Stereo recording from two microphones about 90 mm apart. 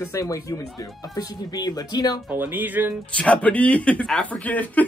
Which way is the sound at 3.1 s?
15° left (ahead or behind).